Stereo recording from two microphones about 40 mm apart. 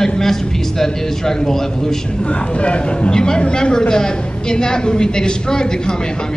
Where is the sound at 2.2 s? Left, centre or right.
Left.